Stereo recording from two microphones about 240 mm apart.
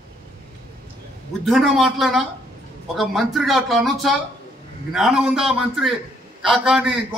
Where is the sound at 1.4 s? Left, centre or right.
Centre.